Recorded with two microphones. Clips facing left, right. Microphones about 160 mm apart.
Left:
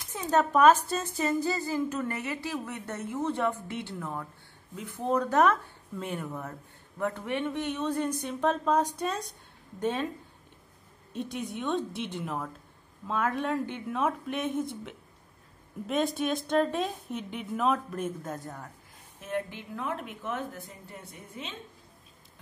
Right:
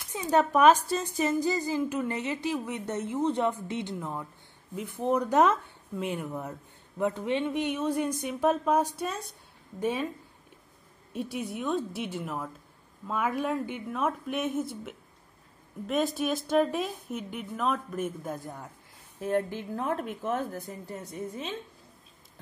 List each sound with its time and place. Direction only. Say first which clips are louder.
0.1 s a woman's voice: right 1 dB; 15° right (ahead or behind)
11.1 s a woman's voice: right 1 dB; 10° right (ahead or behind)
18.2 s speech: right 1 dB; 10° right (ahead or behind)
19.1 s a woman's voice: right 5 dB; 40° right (ahead or behind)